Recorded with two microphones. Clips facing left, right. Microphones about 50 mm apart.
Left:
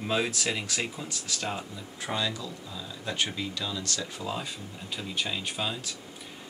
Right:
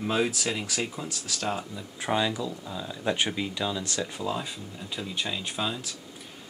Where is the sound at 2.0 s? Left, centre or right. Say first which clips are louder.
Right 5 dB; right.